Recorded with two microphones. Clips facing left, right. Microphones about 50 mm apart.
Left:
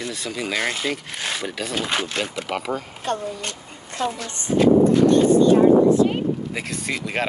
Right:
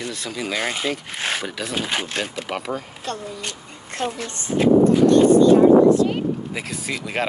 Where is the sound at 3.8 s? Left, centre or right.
Right.